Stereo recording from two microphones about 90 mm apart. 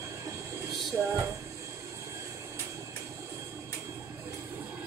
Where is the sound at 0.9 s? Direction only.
30° right (ahead or behind).